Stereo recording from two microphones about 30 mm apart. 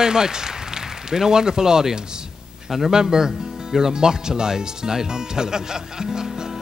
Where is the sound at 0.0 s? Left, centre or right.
Right.